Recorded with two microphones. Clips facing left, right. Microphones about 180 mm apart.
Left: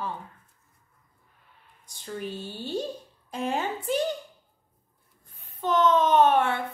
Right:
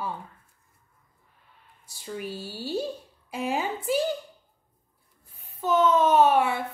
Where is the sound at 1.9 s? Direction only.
5° right (ahead or behind).